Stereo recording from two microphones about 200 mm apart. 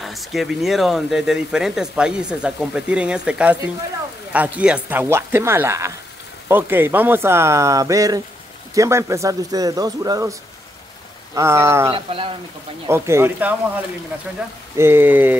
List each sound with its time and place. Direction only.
0.0 s speech: centre (ahead or behind); by 10.3 s 20° right (ahead or behind)
11.3 s speech: 15° right (ahead or behind)
11.9 s speech: 25° right (ahead or behind)
12.8 s speech: 15° right (ahead or behind)
14.8 s speech: 10° right (ahead or behind)